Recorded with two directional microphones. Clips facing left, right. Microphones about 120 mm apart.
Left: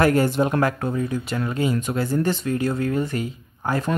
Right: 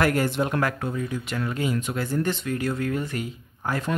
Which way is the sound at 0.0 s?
30° left (ahead or behind).